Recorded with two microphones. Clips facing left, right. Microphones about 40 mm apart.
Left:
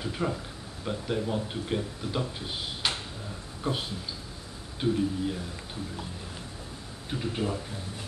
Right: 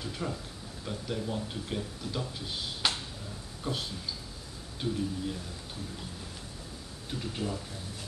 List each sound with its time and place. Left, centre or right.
0.0 s speech: left
7.1 s speech: left